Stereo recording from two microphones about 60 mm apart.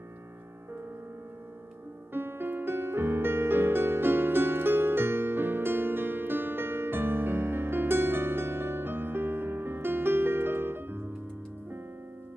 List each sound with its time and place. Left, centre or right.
2.1 s music: right